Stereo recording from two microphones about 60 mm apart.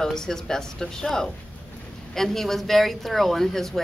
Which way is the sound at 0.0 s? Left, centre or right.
Centre.